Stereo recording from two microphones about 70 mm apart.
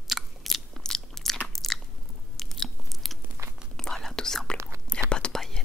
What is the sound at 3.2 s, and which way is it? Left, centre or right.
Crunch, right.